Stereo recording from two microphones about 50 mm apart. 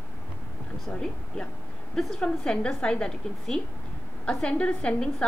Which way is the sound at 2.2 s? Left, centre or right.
Centre.